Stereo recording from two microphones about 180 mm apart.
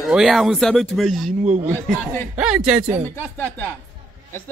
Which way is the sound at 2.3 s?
5° right (ahead or behind).